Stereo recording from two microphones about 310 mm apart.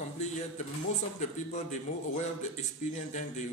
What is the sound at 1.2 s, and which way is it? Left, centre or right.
A man's voice, left.